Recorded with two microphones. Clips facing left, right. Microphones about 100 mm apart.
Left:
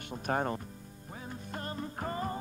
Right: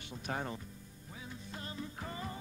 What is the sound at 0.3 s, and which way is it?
Speech, 50° left (ahead or behind).